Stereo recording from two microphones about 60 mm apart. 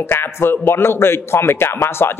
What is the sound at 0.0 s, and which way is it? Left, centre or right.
A man's voice, left.